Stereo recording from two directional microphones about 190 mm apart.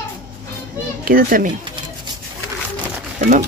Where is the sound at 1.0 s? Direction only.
50° right (ahead or behind).